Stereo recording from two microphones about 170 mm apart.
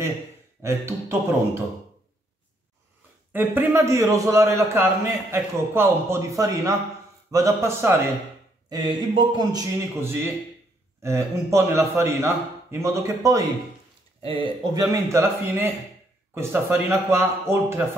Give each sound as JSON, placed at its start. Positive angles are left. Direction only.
{"t": 0.6, "sound": "a man's voice", "side_deg": -15}
{"t": 3.3, "sound": "a man's voice", "side_deg": -15}
{"t": 14.2, "sound": "a man's voice", "side_deg": -30}